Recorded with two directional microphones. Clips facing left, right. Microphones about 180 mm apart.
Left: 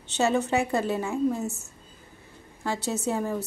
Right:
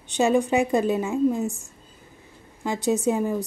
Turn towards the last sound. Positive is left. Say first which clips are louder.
# right 5 dB
turn(degrees=-15)  # may be behind; listen again after turning